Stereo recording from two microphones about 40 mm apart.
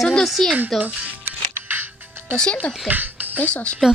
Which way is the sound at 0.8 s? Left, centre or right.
Right.